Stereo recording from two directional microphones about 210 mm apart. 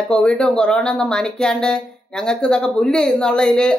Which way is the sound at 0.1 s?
5° left (ahead or behind).